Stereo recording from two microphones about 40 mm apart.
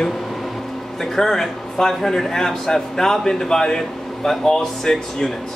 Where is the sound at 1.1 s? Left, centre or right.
Centre.